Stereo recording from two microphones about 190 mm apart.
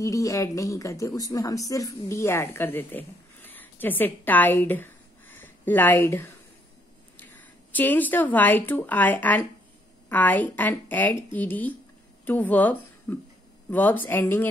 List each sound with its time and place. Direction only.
0.0 s a woman's voice: 15° left (ahead or behind)